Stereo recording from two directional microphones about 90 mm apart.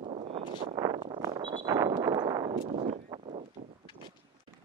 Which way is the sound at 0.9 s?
70° right (ahead or behind).